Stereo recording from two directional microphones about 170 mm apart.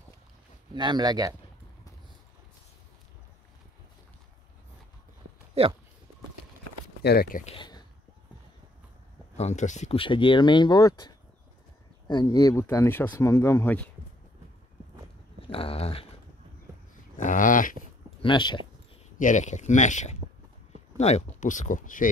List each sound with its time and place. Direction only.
0.7 s speech: 25° right (ahead or behind)
5.5 s speech: 35° right (ahead or behind)
7.0 s speech: 70° left (ahead or behind)
7.4 s speech: 30° left (ahead or behind)
9.4 s speech: 40° left (ahead or behind); by 13.8 s 15° left (ahead or behind)
15.4 s a sound: 35° left (ahead or behind)
17.2 s a sound: 50° left (ahead or behind)
18.2 s speech: 25° left (ahead or behind)
19.1 s speech: 45° left (ahead or behind)